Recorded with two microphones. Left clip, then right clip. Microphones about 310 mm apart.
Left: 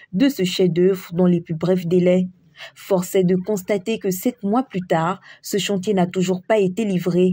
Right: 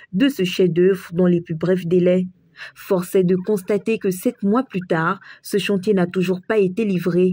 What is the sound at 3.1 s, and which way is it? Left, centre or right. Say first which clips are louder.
Speech: right 1 dB; left.